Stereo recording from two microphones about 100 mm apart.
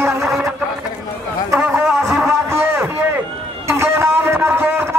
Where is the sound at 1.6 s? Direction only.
10° right (ahead or behind).